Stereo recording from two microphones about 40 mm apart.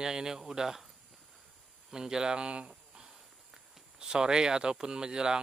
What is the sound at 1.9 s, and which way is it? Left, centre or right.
Speech, centre.